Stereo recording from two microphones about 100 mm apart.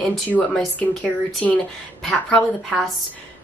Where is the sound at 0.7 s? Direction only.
15° left (ahead or behind).